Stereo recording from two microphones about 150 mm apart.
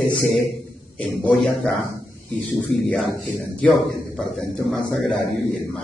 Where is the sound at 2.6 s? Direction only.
5° left (ahead or behind).